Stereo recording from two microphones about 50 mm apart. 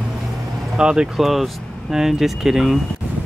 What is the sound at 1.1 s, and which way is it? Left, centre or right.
A woman's voice, centre.